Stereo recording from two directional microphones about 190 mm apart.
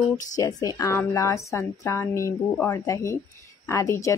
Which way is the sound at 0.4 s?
20° left (ahead or behind).